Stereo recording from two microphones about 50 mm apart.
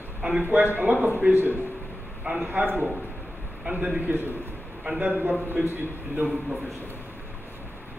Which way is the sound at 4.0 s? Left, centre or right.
Right.